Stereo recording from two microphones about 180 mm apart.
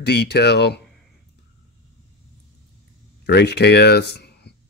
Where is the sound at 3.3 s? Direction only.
65° left (ahead or behind).